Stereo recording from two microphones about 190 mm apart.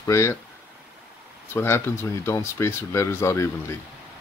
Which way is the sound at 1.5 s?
15° left (ahead or behind).